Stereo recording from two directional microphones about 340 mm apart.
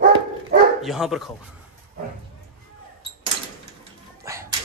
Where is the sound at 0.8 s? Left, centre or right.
Centre.